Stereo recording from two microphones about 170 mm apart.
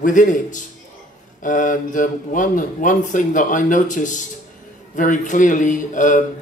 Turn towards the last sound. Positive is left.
turn(degrees=50)  # may be behind; listen again after turning